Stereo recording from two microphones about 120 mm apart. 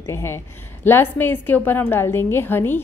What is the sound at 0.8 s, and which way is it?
A woman's voice, 15° left (ahead or behind).